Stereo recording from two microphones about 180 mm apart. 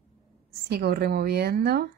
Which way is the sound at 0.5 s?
60° right (ahead or behind).